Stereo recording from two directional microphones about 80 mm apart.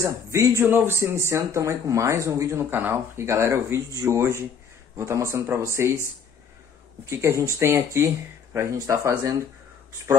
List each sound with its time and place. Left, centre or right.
0.0 s speech: right
7.1 s speech: right